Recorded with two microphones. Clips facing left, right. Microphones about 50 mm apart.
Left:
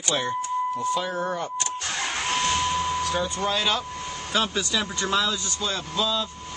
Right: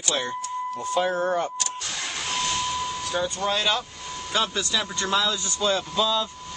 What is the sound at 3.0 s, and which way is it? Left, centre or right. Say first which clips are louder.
Vehicle: left 1 dB; centre.